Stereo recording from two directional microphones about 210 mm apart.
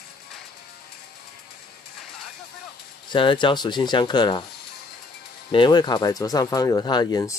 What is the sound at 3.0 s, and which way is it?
Speech, 20° left (ahead or behind).